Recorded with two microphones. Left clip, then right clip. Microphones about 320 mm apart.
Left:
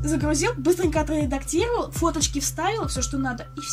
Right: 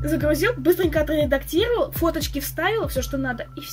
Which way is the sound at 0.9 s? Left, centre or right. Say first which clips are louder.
Right 4 dB; left.